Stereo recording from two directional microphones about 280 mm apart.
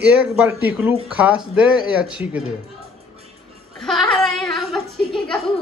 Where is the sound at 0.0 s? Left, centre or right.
Centre.